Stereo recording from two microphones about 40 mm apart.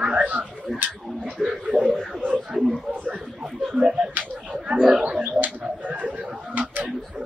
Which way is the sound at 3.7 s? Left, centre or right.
Right.